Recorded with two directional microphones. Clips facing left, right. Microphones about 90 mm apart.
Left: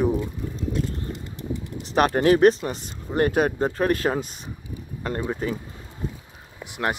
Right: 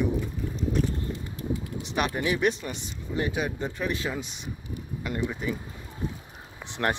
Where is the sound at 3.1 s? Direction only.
55° left (ahead or behind); by 5.6 s 35° left (ahead or behind).